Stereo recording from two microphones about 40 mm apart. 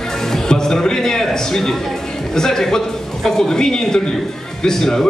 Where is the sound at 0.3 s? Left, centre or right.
Centre.